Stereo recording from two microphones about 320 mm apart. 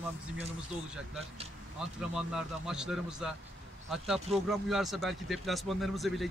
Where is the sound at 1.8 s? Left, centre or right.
Centre.